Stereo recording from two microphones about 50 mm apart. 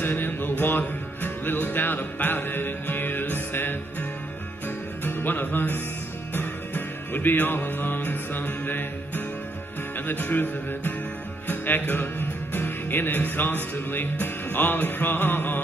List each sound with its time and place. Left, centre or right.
0.0 s music: left